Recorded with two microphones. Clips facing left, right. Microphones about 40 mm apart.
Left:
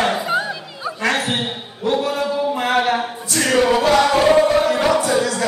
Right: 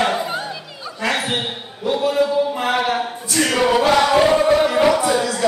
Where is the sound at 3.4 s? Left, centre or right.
Centre.